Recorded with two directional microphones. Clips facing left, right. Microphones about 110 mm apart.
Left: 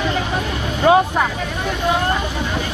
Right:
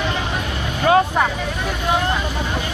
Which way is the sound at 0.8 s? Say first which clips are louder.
Left 2 dB; 20° left (ahead or behind).